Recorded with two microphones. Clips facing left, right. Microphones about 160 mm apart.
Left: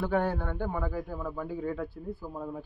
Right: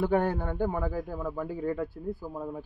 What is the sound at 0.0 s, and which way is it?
A man's voice, 15° right (ahead or behind).